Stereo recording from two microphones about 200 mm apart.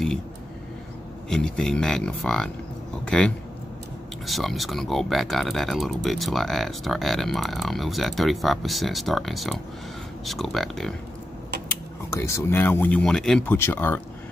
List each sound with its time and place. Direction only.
1.3 s speech: 5° left (ahead or behind)
12.1 s speech: 15° left (ahead or behind)